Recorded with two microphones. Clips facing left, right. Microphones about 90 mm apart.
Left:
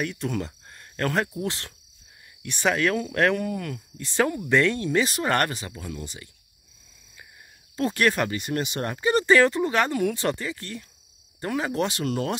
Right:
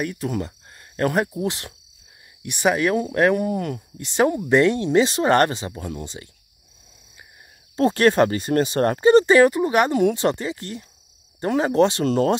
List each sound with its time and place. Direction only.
0.0 s speech: 5° right (ahead or behind); by 6.2 s 30° right (ahead or behind)
7.7 s speech: 35° right (ahead or behind)
9.2 s speech: 20° right (ahead or behind)